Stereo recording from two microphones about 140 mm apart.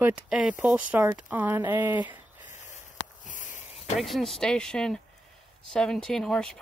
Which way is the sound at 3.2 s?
65° left (ahead or behind).